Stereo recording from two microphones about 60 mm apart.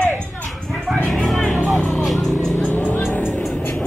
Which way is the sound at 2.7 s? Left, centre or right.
Left.